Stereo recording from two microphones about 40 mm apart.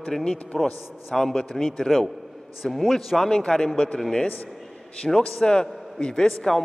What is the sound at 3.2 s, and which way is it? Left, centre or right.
A man's voice, centre.